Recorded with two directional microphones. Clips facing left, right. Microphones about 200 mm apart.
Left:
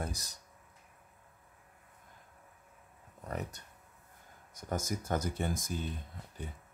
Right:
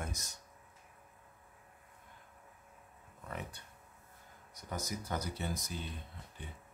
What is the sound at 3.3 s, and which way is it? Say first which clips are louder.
Speech: left 5 dB; 40° left (ahead or behind).